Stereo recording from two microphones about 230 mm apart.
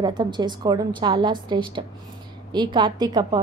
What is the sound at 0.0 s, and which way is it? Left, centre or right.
A woman's voice, centre.